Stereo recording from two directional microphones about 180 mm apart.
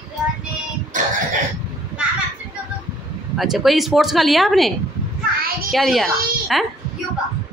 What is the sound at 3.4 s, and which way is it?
Speech, centre (ahead or behind).